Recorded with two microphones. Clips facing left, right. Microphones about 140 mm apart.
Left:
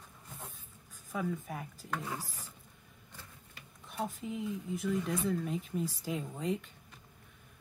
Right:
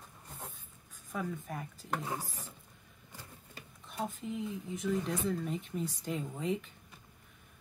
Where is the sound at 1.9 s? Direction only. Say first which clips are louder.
Right 2 dB; 25° right (ahead or behind).